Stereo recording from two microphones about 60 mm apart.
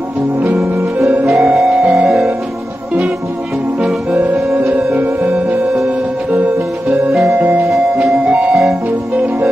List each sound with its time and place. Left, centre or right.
1.2 s music: centre
3.8 s music: right
7.3 s music: right